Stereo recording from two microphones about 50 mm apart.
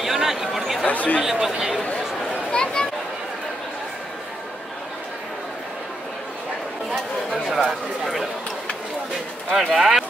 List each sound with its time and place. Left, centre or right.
0.0 s a sound: centre
0.8 s speech: left
1.2 s speech: centre
2.5 s a sound: centre
7.5 s speech: centre
9.6 s speech: centre